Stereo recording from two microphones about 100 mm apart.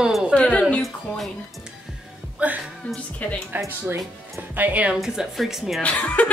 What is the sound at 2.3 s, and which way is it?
Speech, 15° right (ahead or behind).